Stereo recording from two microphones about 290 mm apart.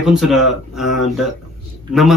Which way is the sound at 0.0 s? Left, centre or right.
Centre.